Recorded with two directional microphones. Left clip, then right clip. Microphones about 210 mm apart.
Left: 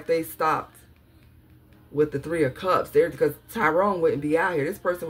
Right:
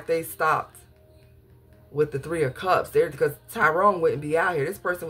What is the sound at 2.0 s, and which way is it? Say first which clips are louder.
Speech: left 1 dB; 20° right (ahead or behind).